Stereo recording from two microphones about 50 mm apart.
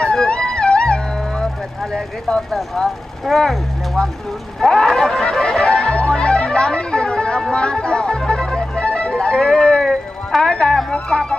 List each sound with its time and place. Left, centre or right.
0.0 s music: centre
2.5 s speech: centre
4.6 s music: centre
9.8 s a sound: centre
10.9 s speech: centre